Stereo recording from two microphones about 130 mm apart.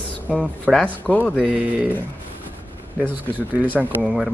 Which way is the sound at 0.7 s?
5° right (ahead or behind).